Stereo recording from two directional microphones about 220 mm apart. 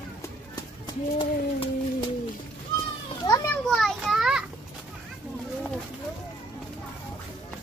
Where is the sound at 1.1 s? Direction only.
20° left (ahead or behind).